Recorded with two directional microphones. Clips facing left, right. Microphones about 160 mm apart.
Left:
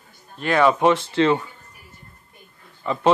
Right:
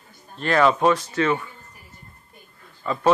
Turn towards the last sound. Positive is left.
turn(degrees=20)  # may be behind; listen again after turning